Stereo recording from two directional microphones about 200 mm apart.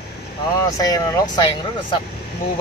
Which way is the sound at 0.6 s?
15° left (ahead or behind).